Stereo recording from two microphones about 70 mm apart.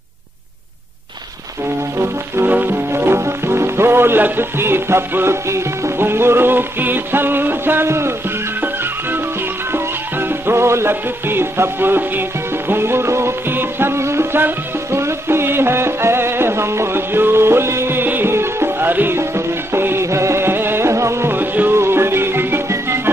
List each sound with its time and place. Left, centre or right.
2.0 s music: right
2.5 s speech: right
9.7 s music: right